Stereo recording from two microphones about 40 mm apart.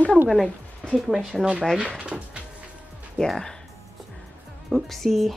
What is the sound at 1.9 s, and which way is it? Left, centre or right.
Speech, right.